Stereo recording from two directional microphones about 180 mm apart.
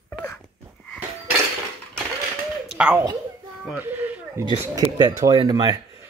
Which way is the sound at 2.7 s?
5° right (ahead or behind).